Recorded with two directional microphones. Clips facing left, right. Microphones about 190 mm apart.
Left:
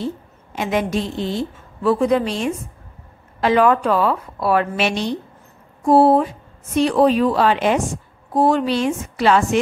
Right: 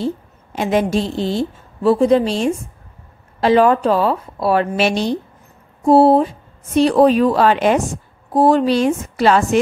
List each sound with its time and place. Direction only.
0.6 s a woman's voice: 30° right (ahead or behind)